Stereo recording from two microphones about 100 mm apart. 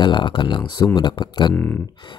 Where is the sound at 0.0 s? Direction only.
55° left (ahead or behind).